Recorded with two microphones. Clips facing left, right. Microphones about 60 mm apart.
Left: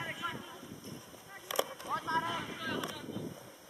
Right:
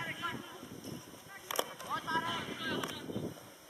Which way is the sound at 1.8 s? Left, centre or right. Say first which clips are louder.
Even; centre.